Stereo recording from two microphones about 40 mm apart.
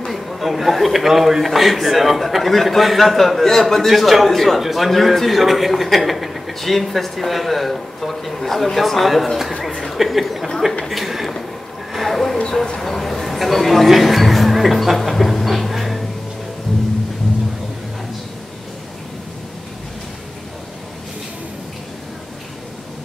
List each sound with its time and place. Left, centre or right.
0.0 s a man's voice: centre
10.9 s a sound: centre
12.4 s speech: centre
12.8 s speech: centre